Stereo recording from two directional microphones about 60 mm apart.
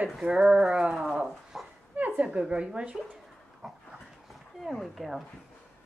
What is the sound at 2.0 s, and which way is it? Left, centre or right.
A woman's voice, right.